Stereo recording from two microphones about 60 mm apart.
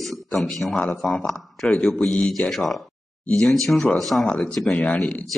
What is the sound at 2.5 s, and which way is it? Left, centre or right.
Speech, centre.